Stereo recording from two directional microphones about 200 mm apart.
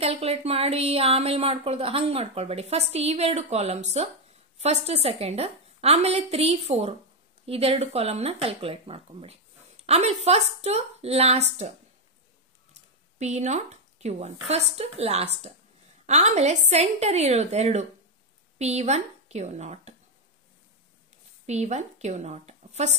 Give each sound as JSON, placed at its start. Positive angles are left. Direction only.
{"t": 0.0, "sound": "a woman's voice", "side_deg": -30}
{"t": 13.2, "sound": "a woman's voice", "side_deg": -35}
{"t": 21.5, "sound": "a woman's voice", "side_deg": -35}